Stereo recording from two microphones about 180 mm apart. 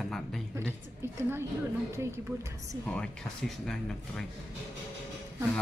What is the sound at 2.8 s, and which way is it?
Speech, 5° left (ahead or behind).